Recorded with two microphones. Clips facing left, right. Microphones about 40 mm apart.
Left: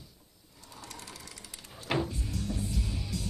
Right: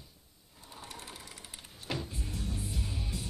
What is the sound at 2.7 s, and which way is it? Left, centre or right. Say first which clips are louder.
Music: left 3 dB; centre.